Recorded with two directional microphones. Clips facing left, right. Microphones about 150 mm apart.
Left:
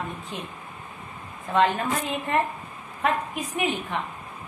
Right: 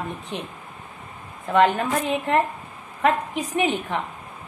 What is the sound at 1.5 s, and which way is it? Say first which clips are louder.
Speech: right 4 dB; 65° right (ahead or behind).